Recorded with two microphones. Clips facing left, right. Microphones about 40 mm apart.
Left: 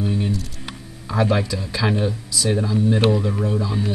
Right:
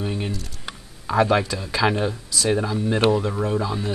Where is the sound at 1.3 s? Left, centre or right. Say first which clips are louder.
Right 1 dB; centre.